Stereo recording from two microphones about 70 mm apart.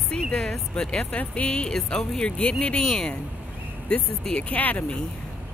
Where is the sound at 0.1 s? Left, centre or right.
Centre.